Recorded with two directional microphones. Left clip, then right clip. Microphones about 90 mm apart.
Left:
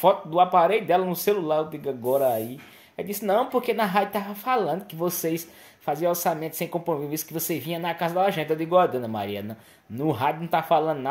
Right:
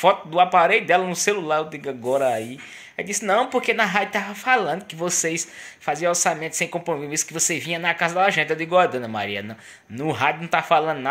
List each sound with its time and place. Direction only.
0.0 s a woman's voice: 30° left (ahead or behind)